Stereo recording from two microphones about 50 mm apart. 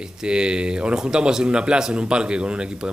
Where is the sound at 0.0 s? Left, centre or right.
Centre.